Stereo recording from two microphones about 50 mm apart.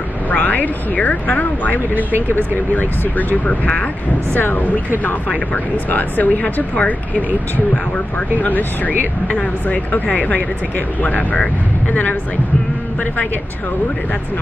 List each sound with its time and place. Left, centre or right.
0.3 s speech: left
5.9 s speech: left
8.4 s speech: left